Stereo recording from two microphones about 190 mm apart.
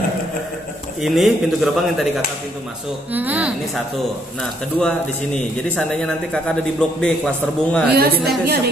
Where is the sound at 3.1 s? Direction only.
10° right (ahead or behind).